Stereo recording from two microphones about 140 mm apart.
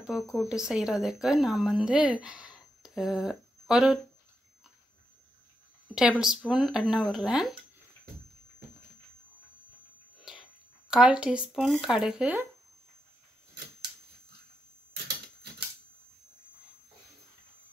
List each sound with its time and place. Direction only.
0.0 s speech: 5° right (ahead or behind)
5.9 s speech: 5° right (ahead or behind)
10.3 s a sound: 5° right (ahead or behind)
10.9 s speech: 5° right (ahead or behind)